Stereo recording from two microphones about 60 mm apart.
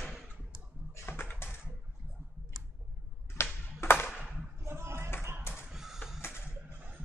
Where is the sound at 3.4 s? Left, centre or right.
Left.